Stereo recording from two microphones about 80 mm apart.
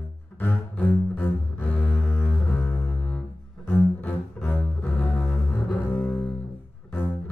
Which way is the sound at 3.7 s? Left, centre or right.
Left.